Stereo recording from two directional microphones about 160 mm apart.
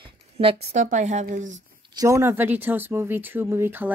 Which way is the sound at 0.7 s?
50° right (ahead or behind).